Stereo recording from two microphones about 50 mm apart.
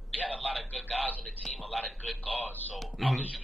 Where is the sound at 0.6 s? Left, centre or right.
Centre.